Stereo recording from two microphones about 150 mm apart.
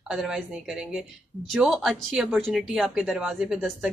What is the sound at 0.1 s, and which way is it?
A woman's voice, centre (ahead or behind).